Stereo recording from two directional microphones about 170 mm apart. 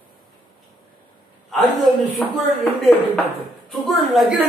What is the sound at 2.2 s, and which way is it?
Speech, 10° left (ahead or behind).